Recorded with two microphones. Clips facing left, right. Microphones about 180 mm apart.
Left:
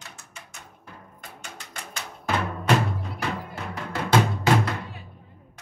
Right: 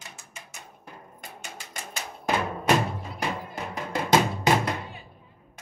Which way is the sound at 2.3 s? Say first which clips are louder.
Right 1 dB; 15° right (ahead or behind).